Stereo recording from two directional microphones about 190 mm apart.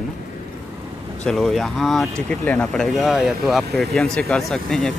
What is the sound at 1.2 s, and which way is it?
Speech, centre (ahead or behind).